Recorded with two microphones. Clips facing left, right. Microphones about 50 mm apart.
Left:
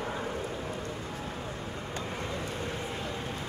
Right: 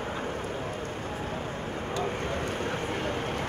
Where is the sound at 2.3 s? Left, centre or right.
Right.